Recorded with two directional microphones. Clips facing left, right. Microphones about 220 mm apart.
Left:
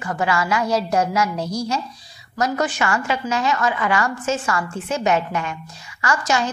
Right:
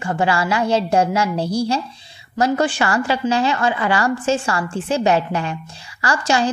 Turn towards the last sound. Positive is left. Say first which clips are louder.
# right 2 dB
turn(degrees=-30)  # may be behind; listen again after turning